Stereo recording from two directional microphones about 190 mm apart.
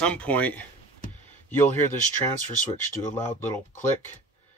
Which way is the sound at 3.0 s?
15° left (ahead or behind).